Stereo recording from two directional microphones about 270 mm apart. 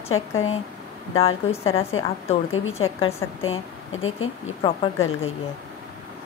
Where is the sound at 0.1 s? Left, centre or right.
Left.